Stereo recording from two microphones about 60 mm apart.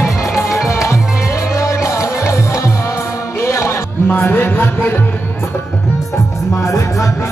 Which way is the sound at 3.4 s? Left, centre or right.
Left.